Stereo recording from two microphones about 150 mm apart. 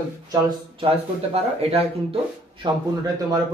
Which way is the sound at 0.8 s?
40° right (ahead or behind).